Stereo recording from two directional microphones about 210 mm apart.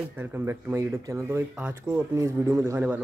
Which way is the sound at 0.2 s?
10° right (ahead or behind).